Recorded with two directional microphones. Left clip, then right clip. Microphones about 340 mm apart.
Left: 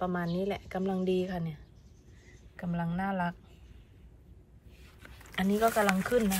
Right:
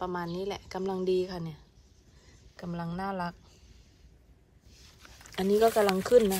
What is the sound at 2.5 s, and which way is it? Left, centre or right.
Speech, centre.